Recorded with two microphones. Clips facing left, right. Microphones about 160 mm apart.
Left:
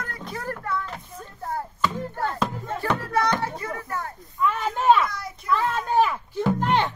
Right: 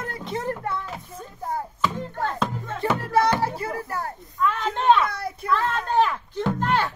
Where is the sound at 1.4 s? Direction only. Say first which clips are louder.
Even; centre (ahead or behind).